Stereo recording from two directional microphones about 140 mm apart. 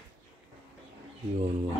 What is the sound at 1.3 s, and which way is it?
Wild animals, 40° right (ahead or behind).